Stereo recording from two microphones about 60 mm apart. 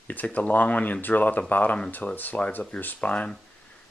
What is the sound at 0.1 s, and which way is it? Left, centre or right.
Speech, left.